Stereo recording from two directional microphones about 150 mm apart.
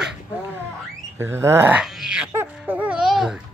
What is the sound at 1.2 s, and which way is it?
Groan, 15° right (ahead or behind).